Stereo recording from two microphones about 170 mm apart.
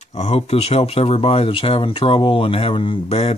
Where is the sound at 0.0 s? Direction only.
40° left (ahead or behind).